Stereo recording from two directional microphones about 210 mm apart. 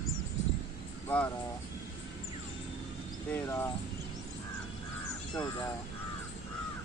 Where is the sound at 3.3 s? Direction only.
10° left (ahead or behind).